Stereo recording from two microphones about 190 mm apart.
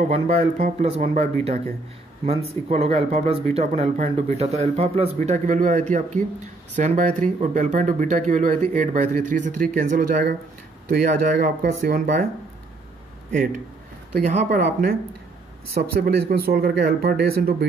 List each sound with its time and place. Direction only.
0.0 s speech: 35° right (ahead or behind)
13.3 s speech: 45° right (ahead or behind)